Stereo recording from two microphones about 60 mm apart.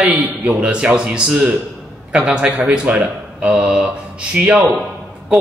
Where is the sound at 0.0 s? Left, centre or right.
Right.